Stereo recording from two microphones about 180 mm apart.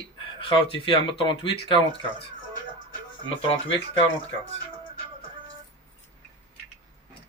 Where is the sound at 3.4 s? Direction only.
30° left (ahead or behind).